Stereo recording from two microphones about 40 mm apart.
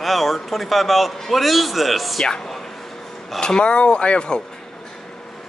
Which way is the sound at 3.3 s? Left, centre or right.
Centre.